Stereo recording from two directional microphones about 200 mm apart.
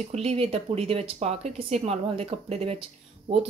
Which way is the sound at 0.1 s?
30° right (ahead or behind).